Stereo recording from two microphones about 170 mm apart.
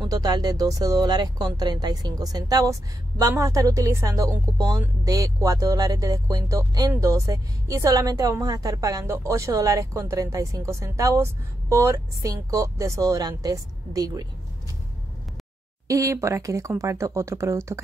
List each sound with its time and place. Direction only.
0.0 s speech: 20° right (ahead or behind)
15.9 s speech: 20° right (ahead or behind)